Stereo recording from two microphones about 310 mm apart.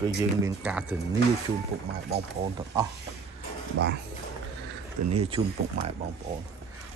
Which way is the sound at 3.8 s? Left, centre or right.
Right.